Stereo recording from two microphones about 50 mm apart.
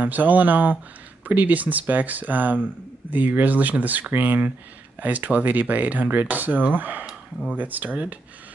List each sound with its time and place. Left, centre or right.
0.0 s speech: right